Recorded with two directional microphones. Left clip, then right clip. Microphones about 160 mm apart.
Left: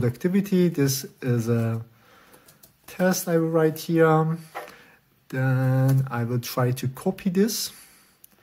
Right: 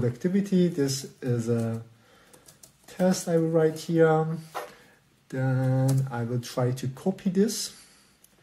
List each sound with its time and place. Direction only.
0.0 s speech: 45° left (ahead or behind)
2.9 s speech: 40° left (ahead or behind)